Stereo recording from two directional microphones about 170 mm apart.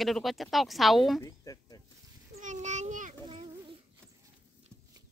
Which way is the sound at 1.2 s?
20° left (ahead or behind).